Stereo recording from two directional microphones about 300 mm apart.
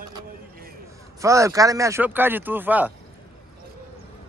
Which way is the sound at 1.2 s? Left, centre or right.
Centre.